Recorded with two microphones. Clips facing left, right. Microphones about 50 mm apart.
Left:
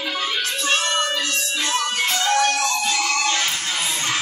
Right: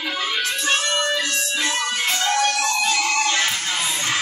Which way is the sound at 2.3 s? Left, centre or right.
Right.